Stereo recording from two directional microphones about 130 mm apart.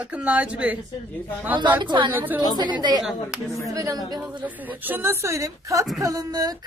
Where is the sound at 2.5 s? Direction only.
35° right (ahead or behind).